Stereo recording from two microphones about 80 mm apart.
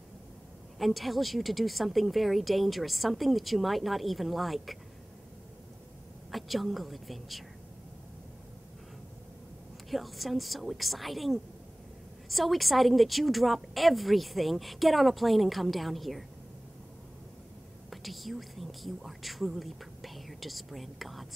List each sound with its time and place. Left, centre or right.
0.7 s a woman's voice: centre
6.3 s a woman's voice: centre
9.8 s a woman's voice: centre
17.8 s a woman's voice: centre